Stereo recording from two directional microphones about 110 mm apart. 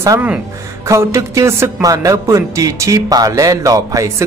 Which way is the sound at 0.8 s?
25° right (ahead or behind).